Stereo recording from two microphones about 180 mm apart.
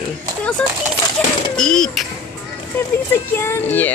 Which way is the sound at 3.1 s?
15° left (ahead or behind).